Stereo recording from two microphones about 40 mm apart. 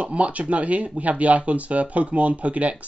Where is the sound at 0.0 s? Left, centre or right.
Right.